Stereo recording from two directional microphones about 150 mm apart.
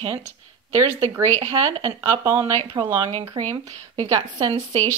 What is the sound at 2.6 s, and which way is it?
A woman's voice, 35° right (ahead or behind).